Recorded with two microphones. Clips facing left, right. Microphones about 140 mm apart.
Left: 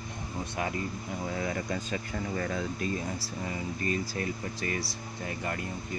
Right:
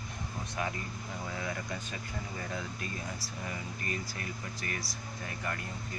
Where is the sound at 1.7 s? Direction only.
60° left (ahead or behind).